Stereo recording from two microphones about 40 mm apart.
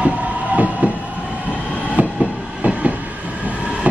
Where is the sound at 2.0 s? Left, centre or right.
Right.